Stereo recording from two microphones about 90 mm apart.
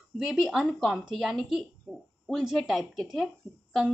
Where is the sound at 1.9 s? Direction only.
10° right (ahead or behind).